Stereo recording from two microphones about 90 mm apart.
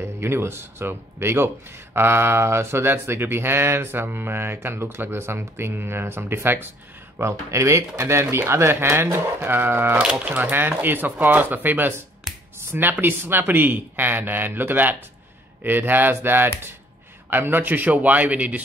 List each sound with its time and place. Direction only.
0.0 s speech: 25° right (ahead or behind)
10.0 s a man's voice: 10° right (ahead or behind)